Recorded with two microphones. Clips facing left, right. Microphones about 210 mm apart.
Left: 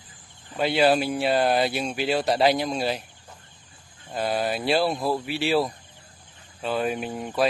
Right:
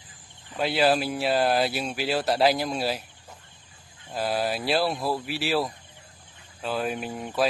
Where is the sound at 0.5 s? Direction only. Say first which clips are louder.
Left 2 dB; centre (ahead or behind).